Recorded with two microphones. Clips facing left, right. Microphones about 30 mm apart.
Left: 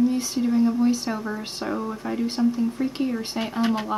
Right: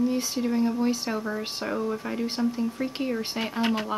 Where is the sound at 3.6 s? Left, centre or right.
Right.